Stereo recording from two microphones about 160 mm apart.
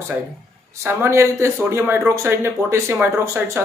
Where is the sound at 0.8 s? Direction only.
15° right (ahead or behind).